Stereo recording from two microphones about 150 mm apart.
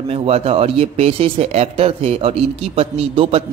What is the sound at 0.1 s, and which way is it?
A man's voice, 40° right (ahead or behind).